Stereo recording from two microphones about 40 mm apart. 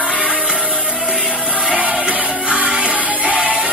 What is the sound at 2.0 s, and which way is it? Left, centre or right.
Music, right.